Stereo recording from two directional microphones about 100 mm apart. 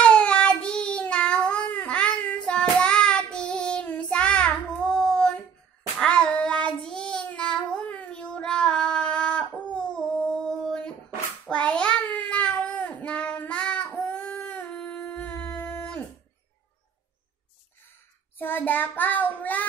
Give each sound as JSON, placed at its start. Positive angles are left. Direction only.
{"t": 0.0, "sound": "child singing", "side_deg": 10}
{"t": 18.4, "sound": "child singing", "side_deg": 20}